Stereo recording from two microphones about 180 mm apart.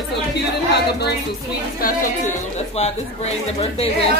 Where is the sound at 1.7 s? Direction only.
50° left (ahead or behind).